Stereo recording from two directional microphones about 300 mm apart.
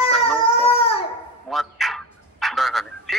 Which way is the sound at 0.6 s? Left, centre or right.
Centre.